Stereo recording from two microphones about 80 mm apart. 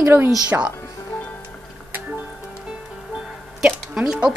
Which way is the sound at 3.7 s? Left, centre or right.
Centre.